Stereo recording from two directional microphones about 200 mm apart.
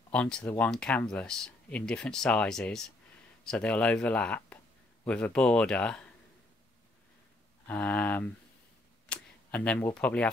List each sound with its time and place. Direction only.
0.1 s speech: 5° left (ahead or behind)
7.6 s speech: 10° left (ahead or behind)